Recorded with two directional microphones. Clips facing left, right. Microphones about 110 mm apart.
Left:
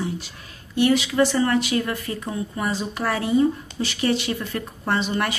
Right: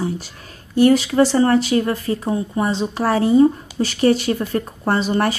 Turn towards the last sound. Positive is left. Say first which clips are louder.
# right 5 dB
turn(degrees=-35)  # may be behind; listen again after turning